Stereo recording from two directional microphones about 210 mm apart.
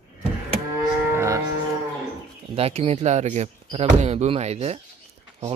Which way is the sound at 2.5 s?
30° right (ahead or behind).